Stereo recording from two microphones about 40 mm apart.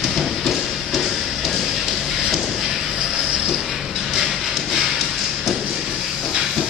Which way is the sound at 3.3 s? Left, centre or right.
Centre.